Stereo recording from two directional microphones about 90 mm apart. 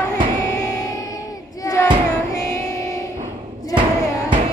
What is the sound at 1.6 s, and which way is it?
Music, 40° left (ahead or behind).